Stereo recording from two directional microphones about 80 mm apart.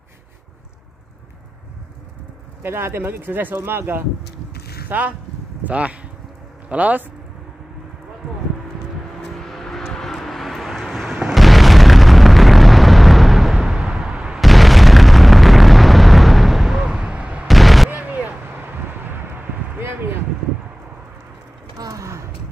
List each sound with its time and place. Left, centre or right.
2.6 s speech: right
9.2 s vehicle: centre
17.5 s artillery fire: centre
17.8 s artillery fire: right
19.8 s a sound: right
21.7 s a sound: right